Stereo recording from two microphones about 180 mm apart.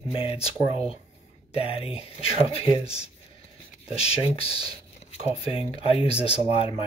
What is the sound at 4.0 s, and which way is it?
Speech, 35° left (ahead or behind).